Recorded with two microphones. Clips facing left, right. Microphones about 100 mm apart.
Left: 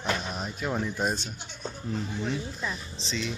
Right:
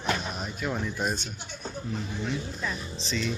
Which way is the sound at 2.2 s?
15° left (ahead or behind).